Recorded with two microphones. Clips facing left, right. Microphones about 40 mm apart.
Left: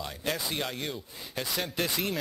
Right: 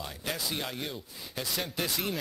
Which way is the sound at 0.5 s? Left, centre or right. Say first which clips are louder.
Left 2 dB; centre.